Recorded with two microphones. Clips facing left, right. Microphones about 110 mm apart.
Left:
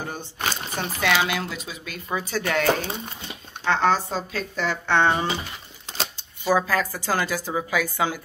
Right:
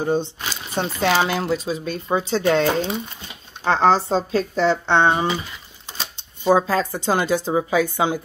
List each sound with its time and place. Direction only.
0.0 s speech: 20° right (ahead or behind)
0.7 s speech: 35° right (ahead or behind)